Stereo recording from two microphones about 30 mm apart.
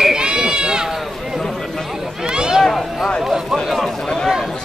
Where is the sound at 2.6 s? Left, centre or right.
Centre.